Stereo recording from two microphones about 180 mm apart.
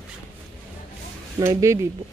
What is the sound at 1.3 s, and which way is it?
Speech, 15° right (ahead or behind).